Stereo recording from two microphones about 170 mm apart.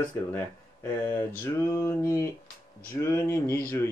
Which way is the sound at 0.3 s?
10° left (ahead or behind).